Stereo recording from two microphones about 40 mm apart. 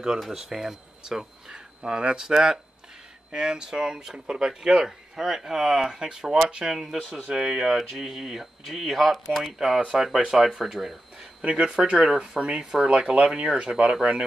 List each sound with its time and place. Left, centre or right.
0.3 s speech: centre
1.8 s speech: right
6.7 s speech: centre
7.2 s speech: centre
7.7 s speech: centre
11.4 s speech: right